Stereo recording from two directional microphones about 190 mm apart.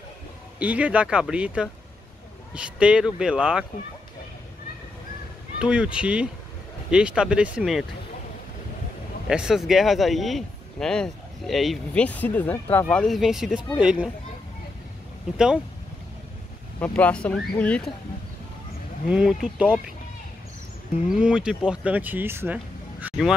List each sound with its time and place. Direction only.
0.6 s speech: 5° right (ahead or behind)
5.6 s speech: 5° right (ahead or behind)
9.3 s speech: 5° right (ahead or behind)
15.3 s speech: 5° right (ahead or behind)
16.8 s speech: 5° left (ahead or behind)
19.0 s speech: 5° right (ahead or behind)
21.1 s speech: 5° right (ahead or behind)